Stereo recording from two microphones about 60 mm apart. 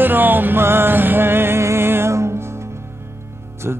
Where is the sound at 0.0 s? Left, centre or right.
Right.